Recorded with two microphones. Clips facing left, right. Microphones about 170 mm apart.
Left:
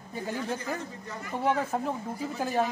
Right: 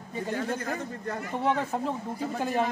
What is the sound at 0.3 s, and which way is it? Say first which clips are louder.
Speech: right 1 dB; 60° right (ahead or behind).